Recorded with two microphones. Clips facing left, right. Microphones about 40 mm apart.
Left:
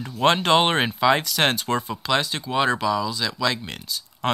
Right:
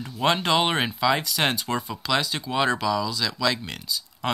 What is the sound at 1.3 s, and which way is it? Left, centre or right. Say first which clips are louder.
Speech: left 3 dB; centre.